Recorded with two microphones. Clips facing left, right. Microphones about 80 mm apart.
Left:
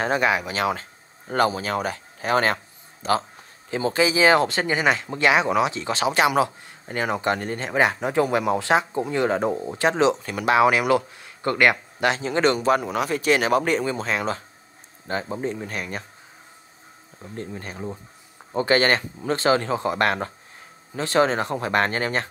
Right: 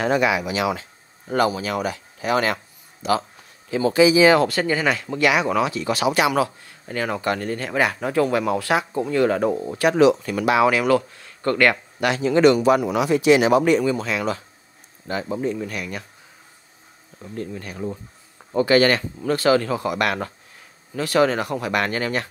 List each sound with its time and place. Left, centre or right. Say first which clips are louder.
0.0 s speech: right 2 dB; left
10.8 s speech: right 2 dB; centre
12.1 s speech: right 6 dB; left
17.4 s speech: right 3 dB; left